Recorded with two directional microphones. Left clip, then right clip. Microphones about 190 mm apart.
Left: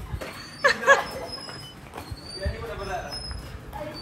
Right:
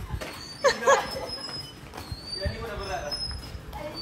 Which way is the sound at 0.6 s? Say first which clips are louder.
Left 2 dB; 25° right (ahead or behind).